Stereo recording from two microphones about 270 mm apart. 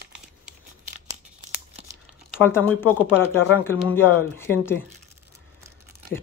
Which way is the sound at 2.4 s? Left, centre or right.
Centre.